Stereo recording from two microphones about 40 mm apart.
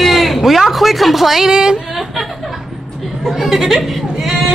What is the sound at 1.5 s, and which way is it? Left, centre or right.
Speech, centre.